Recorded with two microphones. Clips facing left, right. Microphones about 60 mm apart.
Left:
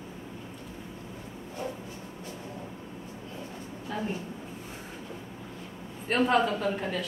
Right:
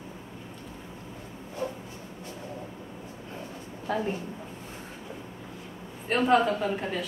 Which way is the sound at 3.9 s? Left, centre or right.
Right.